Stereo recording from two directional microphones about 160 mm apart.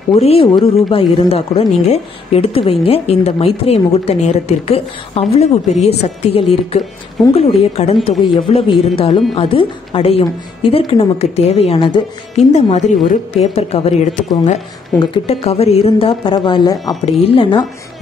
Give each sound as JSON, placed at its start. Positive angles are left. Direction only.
{"t": 0.1, "sound": "speech", "side_deg": 40}
{"t": 12.4, "sound": "speech", "side_deg": 45}
{"t": 15.0, "sound": "speech", "side_deg": 30}